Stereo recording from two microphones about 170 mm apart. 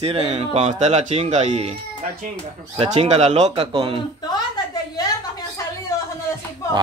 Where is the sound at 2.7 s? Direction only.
40° right (ahead or behind).